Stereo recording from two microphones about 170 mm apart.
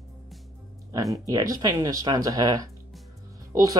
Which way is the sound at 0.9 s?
20° right (ahead or behind).